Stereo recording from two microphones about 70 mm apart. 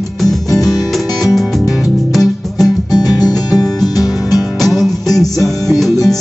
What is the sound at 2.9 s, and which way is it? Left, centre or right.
Music, left.